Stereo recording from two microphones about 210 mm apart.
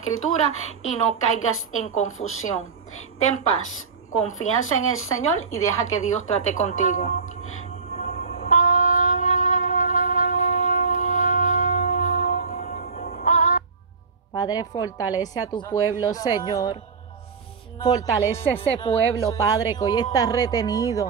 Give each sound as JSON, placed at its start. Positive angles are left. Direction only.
{"t": 0.0, "sound": "a woman's voice", "side_deg": 80}
{"t": 3.5, "sound": "a woman's voice", "side_deg": 80}
{"t": 4.2, "sound": "a woman's voice", "side_deg": 35}
{"t": 4.5, "sound": "speech", "side_deg": 80}
{"t": 6.2, "sound": "a woman's voice", "side_deg": 35}
{"t": 8.1, "sound": "train", "side_deg": 45}
{"t": 14.3, "sound": "speech", "side_deg": 20}
{"t": 15.0, "sound": "a woman's voice", "side_deg": -10}
{"t": 15.2, "sound": "speech", "side_deg": 20}